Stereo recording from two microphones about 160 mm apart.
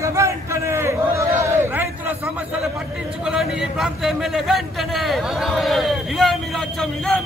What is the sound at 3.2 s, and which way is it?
A man's voice, 5° right (ahead or behind).